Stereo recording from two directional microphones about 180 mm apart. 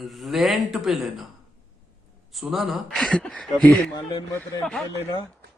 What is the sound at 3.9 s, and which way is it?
Speech, 25° left (ahead or behind).